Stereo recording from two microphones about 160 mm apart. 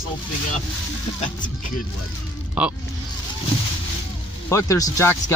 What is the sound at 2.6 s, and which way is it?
Speech, 5° right (ahead or behind).